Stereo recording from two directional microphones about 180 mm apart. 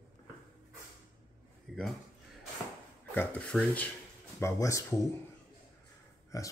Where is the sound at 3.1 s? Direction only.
10° left (ahead or behind).